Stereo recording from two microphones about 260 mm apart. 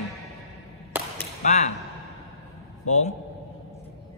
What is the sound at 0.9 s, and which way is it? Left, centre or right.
Whip, centre.